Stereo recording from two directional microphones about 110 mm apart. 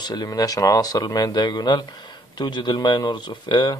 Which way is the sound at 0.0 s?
35° left (ahead or behind).